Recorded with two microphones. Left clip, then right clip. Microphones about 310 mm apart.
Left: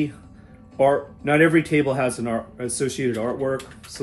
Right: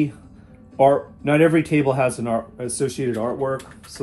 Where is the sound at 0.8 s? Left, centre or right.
Centre.